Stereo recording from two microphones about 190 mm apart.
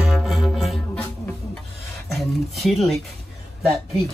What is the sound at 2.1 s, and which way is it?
Speech, centre (ahead or behind).